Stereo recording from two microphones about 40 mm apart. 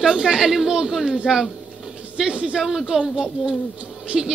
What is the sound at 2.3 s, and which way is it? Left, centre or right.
Speech, right.